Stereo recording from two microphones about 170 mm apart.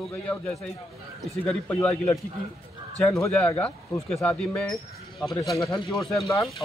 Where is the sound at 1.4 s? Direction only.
15° left (ahead or behind).